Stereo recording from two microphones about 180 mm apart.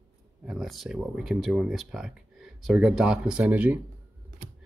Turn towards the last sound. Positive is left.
turn(degrees=-10)  # may be behind; listen again after turning